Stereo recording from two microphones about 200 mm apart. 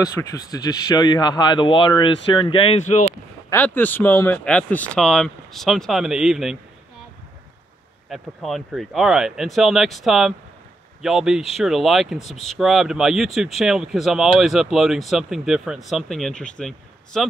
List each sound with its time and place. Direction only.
0.2 s speech: 10° left (ahead or behind); by 3.1 s 35° left (ahead or behind)
3.4 s speech: 10° left (ahead or behind)
8.1 s speech: centre (ahead or behind)